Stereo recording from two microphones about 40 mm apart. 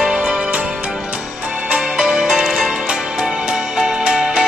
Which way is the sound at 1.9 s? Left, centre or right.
Centre.